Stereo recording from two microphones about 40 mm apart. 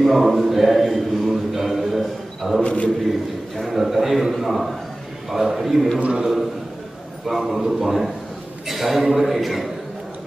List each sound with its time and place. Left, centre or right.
0.0 s mantra: centre
2.6 s a man's voice: left
3.1 s a man's voice: centre
5.9 s a man's voice: right
7.2 s a man's voice: centre